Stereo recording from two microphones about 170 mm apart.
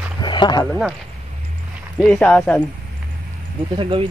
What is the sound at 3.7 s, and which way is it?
Speech, 30° right (ahead or behind).